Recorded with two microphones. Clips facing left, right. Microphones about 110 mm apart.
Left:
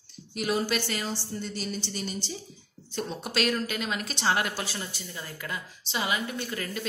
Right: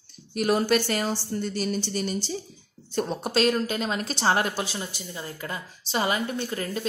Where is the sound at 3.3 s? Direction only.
30° right (ahead or behind).